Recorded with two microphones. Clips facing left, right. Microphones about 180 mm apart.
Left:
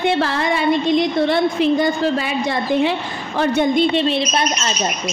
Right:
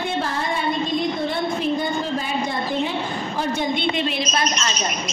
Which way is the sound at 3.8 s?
30° left (ahead or behind).